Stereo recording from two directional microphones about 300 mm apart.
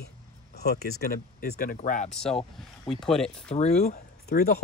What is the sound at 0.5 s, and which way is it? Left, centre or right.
Speech, left.